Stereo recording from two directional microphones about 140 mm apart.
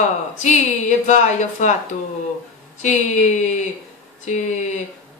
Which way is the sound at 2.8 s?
60° left (ahead or behind).